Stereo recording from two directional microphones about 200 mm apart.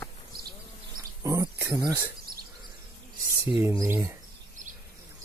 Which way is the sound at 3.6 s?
15° right (ahead or behind).